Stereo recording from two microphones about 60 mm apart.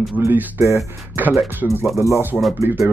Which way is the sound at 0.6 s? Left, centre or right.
Right.